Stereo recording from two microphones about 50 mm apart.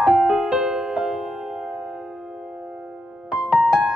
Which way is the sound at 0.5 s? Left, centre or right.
Centre.